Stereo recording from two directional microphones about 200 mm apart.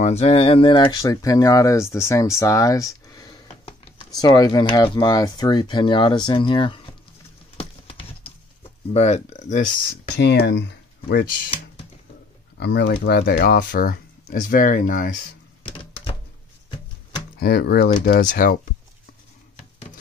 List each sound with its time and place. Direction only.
0.0 s speech: 30° left (ahead or behind)
7.5 s a sound: 30° left (ahead or behind)
8.9 s speech: 35° left (ahead or behind)
10.1 s speech: 60° left (ahead or behind)
11.2 s speech: 25° left (ahead or behind)
12.5 s speech: 55° left (ahead or behind)
15.6 s a sound: 25° left (ahead or behind)
17.4 s speech: 50° left (ahead or behind)